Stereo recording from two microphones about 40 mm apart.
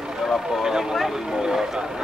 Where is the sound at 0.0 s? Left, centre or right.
Centre.